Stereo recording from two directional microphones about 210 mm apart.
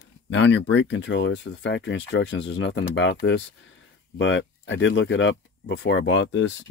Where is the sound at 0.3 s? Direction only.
60° left (ahead or behind).